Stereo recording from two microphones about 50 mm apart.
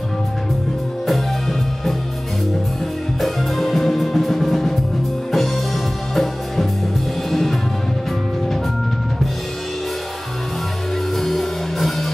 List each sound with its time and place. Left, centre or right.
3.2 s music: centre
6.1 s music: centre
11.1 s music: centre